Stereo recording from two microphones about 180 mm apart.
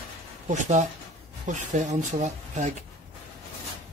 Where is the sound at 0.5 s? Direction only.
40° right (ahead or behind).